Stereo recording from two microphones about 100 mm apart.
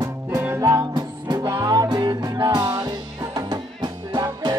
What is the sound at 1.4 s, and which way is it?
Music, 30° right (ahead or behind).